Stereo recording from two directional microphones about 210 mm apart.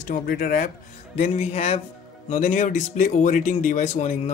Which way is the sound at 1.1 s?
30° left (ahead or behind).